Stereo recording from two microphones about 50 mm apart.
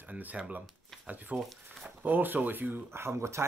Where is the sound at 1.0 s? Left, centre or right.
Right.